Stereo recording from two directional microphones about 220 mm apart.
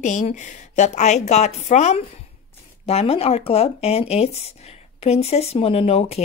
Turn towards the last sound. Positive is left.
turn(degrees=25)  # may be behind; listen again after turning